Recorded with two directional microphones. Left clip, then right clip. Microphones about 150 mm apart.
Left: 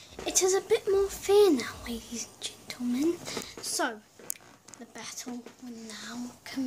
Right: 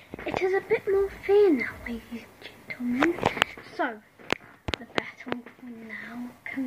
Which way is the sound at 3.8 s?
15° left (ahead or behind).